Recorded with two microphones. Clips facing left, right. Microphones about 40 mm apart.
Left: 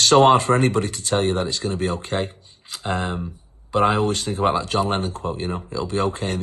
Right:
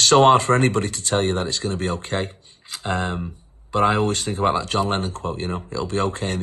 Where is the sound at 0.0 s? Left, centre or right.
Right.